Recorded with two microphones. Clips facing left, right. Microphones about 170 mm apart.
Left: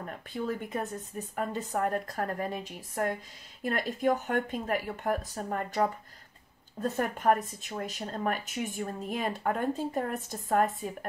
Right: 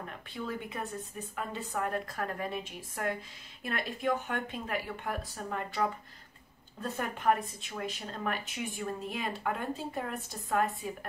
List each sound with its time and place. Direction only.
0.5 s a woman's voice: 45° left (ahead or behind)